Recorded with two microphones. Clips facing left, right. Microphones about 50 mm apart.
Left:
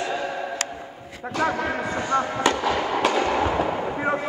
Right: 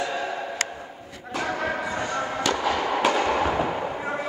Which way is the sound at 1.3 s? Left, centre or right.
Left.